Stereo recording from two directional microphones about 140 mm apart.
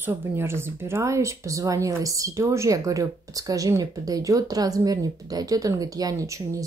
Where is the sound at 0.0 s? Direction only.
15° right (ahead or behind).